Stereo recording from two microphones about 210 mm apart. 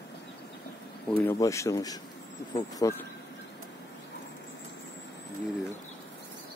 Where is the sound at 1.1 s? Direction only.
15° left (ahead or behind).